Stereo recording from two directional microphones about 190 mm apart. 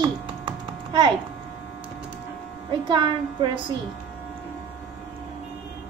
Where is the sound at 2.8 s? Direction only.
25° right (ahead or behind).